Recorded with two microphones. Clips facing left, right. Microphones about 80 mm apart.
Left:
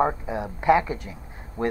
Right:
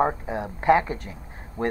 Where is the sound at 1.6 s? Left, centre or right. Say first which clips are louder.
Even; left.